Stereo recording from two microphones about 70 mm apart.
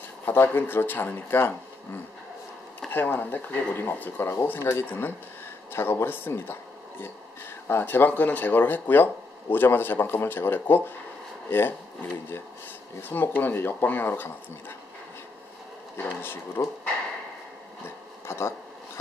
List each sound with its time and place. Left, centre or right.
0.2 s speech: left
2.9 s speech: left
13.1 s speech: left
16.0 s speech: left
18.2 s a sound: left